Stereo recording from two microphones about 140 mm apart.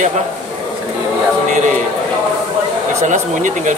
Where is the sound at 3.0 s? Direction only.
60° right (ahead or behind).